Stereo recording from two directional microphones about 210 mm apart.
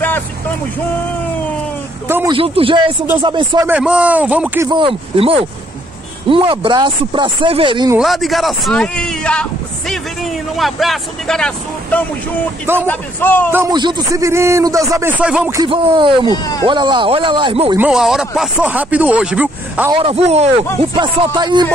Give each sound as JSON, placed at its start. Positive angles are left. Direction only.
{"t": 2.0, "sound": "speech", "side_deg": -10}
{"t": 2.3, "sound": "speech", "side_deg": -25}
{"t": 3.6, "sound": "a man's voice", "side_deg": -5}
{"t": 4.6, "sound": "speech", "side_deg": -25}
{"t": 8.0, "sound": "a man's voice", "side_deg": 0}
{"t": 13.5, "sound": "a man's voice", "side_deg": -15}
{"t": 15.6, "sound": "speech", "side_deg": -25}
{"t": 16.3, "sound": "a man's voice", "side_deg": 20}
{"t": 16.6, "sound": "speech", "side_deg": -20}
{"t": 17.7, "sound": "a man's voice", "side_deg": -5}
{"t": 19.9, "sound": "speech", "side_deg": -30}